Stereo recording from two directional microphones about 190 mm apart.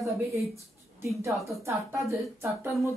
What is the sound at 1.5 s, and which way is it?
A man's voice, 15° right (ahead or behind).